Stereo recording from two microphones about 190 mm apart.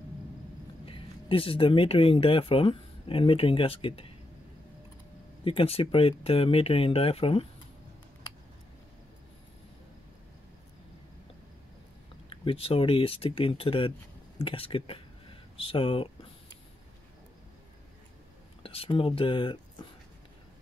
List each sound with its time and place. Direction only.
0.8 s speech: 30° left (ahead or behind)
5.4 s speech: 30° left (ahead or behind)
12.3 s speech: 30° left (ahead or behind)
18.6 s speech: 30° left (ahead or behind)